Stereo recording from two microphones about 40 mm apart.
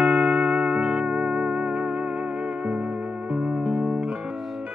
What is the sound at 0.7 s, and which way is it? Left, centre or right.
Music, right.